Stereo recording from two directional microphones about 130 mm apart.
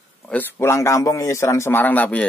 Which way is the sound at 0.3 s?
15° left (ahead or behind).